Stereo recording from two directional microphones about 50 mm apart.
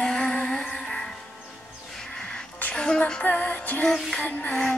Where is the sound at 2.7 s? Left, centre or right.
Centre.